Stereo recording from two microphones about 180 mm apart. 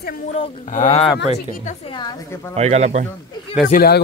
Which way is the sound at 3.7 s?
60° left (ahead or behind).